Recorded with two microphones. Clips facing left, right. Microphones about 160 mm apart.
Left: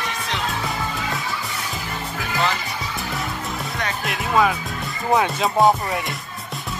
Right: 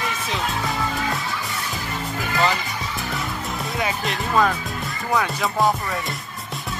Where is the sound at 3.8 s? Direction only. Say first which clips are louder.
Right 3 dB; 5° left (ahead or behind).